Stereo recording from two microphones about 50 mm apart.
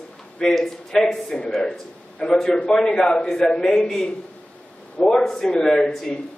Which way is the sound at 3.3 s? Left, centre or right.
Centre.